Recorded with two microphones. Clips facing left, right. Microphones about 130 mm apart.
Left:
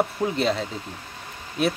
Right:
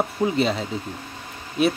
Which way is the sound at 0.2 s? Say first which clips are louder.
Right 2 dB; centre (ahead or behind).